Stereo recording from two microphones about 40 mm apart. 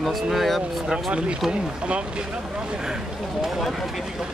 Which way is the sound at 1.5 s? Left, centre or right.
Right.